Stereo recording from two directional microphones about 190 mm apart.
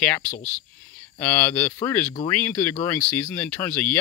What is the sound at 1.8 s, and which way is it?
Speech, 15° left (ahead or behind).